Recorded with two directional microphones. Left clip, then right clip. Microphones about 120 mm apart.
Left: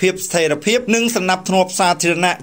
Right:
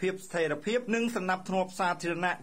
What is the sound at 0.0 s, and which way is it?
Speech, 40° left (ahead or behind).